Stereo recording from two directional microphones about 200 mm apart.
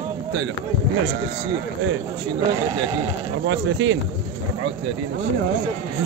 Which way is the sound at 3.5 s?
65° right (ahead or behind).